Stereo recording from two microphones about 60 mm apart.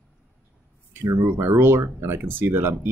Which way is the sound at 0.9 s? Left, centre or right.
Right.